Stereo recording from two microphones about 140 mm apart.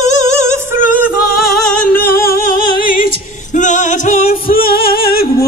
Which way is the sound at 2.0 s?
90° left.